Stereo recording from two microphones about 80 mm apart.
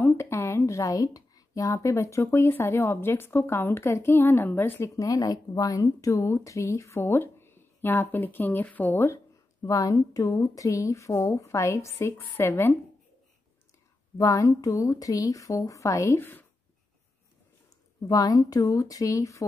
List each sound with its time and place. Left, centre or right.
0.0 s speech: left
4.9 s speech: left
9.7 s speech: left
14.1 s a woman's voice: left
16.2 s speech: left
18.0 s a woman's voice: left